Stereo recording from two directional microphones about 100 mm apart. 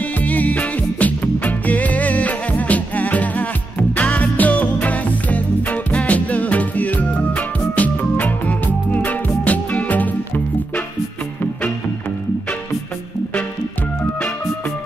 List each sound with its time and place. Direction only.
0.2 s music: 15° left (ahead or behind)